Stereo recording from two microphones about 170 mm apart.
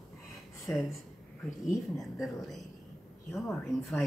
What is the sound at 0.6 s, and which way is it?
Speech, centre (ahead or behind).